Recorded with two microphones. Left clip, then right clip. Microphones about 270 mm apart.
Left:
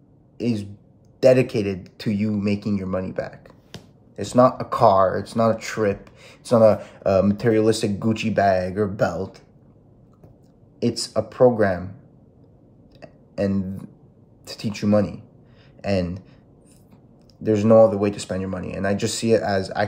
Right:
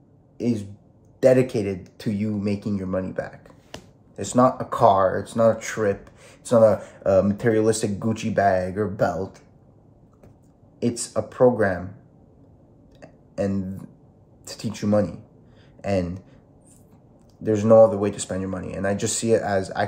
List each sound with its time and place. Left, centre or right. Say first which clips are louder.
1.2 s speech: left 1 dB; centre
10.8 s speech: left 2 dB; centre
13.0 s a sound: left 2 dB; centre
14.4 s speech: left 2 dB; centre
17.5 s speech: even; centre